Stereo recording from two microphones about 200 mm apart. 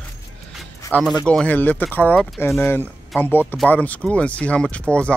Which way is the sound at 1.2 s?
5° left (ahead or behind).